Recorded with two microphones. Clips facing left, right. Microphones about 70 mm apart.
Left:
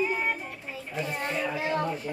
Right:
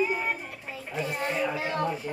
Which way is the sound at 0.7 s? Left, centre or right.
Centre.